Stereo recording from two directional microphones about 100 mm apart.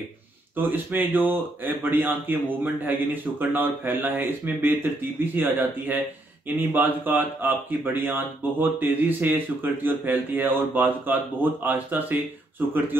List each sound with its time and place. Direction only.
0.6 s speech: 20° right (ahead or behind)